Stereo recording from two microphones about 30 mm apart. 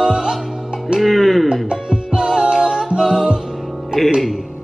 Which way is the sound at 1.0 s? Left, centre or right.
Centre.